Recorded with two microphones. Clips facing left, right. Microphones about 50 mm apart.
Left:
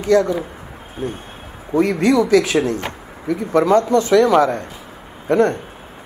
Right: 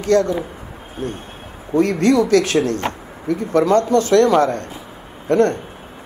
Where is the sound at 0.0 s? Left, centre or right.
Centre.